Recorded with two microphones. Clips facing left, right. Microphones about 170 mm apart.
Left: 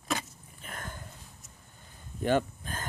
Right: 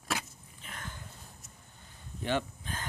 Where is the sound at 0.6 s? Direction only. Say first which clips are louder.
Left 3 dB; 45° left (ahead or behind).